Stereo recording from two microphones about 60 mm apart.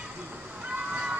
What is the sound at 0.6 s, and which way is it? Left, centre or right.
Cat, right.